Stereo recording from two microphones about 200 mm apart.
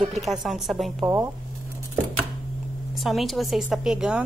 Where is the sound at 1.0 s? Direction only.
15° right (ahead or behind).